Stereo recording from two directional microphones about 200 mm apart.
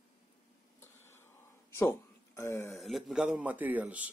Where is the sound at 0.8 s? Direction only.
10° left (ahead or behind).